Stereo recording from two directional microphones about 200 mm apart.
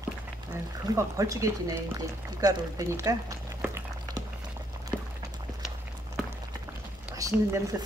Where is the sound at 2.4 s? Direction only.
15° right (ahead or behind).